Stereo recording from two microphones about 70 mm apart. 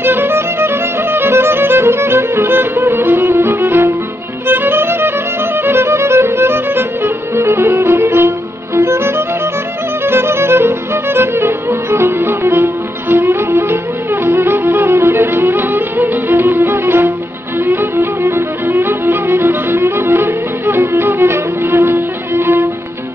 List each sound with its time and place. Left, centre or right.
0.0 s music: right
7.3 s violin: right
8.7 s music: right